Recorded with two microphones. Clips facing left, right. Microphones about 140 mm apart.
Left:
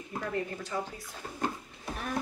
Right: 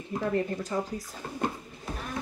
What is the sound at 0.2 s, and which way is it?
Speech, 40° right (ahead or behind).